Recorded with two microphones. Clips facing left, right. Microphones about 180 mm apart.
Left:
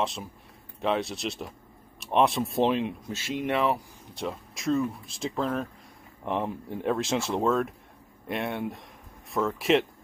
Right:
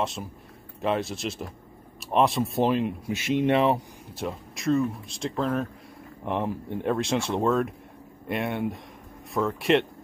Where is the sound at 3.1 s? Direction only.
20° right (ahead or behind).